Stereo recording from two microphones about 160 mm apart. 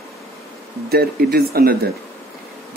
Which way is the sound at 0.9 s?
75° right (ahead or behind).